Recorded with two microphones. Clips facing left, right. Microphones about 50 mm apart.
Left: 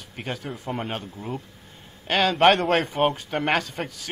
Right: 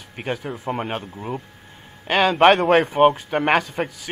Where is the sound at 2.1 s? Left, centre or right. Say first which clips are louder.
Right 3 dB; centre.